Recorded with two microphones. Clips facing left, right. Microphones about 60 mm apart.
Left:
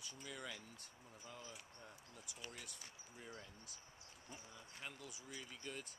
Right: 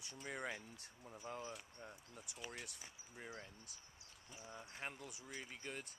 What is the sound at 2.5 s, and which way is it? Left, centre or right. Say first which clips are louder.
Speech: right 3 dB; right.